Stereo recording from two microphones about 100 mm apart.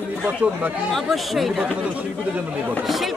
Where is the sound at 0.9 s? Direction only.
Centre (ahead or behind).